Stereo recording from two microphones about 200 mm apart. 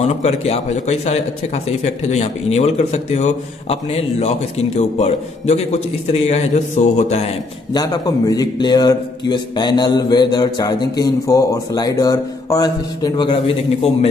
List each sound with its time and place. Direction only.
0.0 s speech: 35° left (ahead or behind)
7.7 s a man's voice: 20° left (ahead or behind)